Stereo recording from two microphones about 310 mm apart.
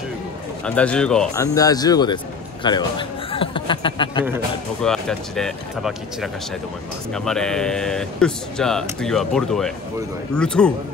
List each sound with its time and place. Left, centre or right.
0.7 s a man's voice: centre
4.8 s speech: centre